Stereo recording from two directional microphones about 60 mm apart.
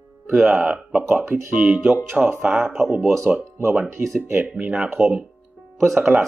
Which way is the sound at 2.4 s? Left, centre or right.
Centre.